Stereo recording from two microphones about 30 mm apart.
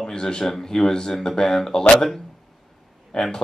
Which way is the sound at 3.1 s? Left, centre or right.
Left.